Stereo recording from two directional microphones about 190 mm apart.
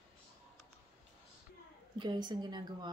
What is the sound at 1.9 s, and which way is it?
Speech, 20° right (ahead or behind).